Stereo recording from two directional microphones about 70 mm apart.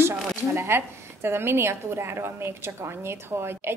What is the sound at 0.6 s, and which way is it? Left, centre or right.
A woman's voice, right.